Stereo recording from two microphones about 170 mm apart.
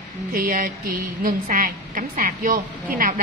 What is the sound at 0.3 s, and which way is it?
A woman's voice, 55° right (ahead or behind).